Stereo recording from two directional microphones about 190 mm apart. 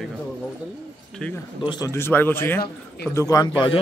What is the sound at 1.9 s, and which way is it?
A man's voice, 10° left (ahead or behind).